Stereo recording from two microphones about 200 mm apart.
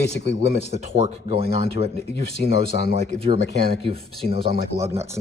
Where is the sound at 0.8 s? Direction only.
35° right (ahead or behind).